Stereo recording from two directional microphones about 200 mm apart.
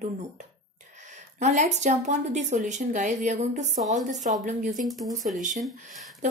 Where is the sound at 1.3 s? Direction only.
35° right (ahead or behind).